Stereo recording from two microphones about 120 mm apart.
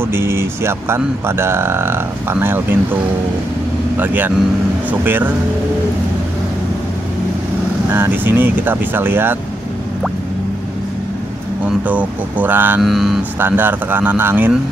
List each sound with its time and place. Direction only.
0.0 s speech: 20° right (ahead or behind)
7.9 s speech: 20° right (ahead or behind)
11.6 s speech: 10° right (ahead or behind)
12.8 s speech: centre (ahead or behind)
13.4 s speech: 15° right (ahead or behind)